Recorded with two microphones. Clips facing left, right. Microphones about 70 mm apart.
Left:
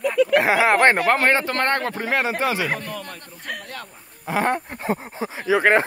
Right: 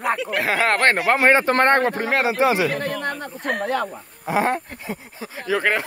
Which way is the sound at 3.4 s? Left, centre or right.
Right.